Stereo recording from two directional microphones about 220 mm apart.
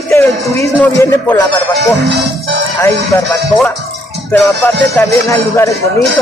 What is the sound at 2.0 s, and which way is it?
Music, 50° right (ahead or behind).